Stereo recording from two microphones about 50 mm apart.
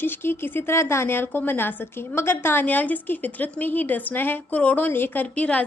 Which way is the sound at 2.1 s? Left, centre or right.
Left.